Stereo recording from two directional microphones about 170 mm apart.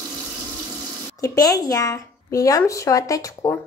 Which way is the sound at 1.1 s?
20° left (ahead or behind).